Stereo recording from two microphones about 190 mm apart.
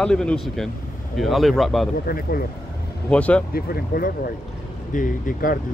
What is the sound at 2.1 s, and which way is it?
Speech, 50° left (ahead or behind).